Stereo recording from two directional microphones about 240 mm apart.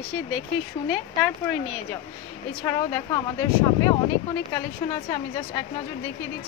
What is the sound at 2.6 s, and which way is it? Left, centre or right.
Speech, centre.